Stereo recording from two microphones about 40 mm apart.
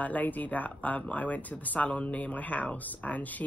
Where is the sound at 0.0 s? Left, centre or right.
Left.